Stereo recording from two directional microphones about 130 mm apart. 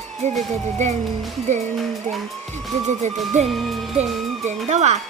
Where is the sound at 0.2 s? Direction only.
60° right (ahead or behind).